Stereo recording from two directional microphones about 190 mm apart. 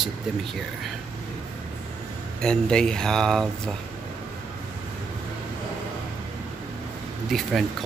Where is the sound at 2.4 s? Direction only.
5° left (ahead or behind).